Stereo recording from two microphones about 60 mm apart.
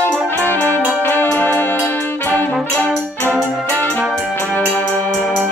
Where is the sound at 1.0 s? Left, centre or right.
Left.